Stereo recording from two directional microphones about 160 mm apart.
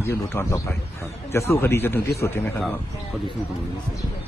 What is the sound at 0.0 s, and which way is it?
A man's voice, 15° left (ahead or behind).